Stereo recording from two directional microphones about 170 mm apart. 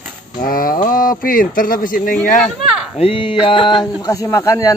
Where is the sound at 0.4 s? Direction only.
55° left (ahead or behind).